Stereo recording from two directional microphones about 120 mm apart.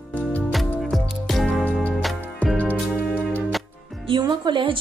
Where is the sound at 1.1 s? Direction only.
Centre (ahead or behind).